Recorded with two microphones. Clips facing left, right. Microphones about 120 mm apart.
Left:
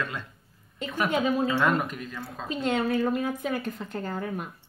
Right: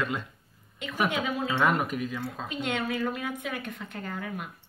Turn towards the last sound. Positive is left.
turn(degrees=35)  # may be behind; listen again after turning